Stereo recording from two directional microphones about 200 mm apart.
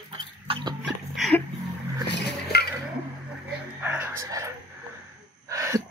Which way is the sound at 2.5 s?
55° left (ahead or behind).